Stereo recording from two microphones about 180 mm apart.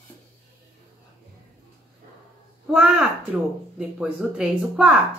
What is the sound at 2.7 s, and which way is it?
Speech, 5° right (ahead or behind).